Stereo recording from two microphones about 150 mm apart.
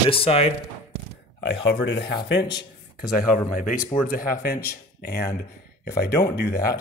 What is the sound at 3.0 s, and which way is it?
Speech, 70° left (ahead or behind).